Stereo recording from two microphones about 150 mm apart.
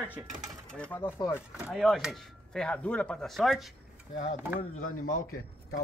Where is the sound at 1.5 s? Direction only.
5° right (ahead or behind).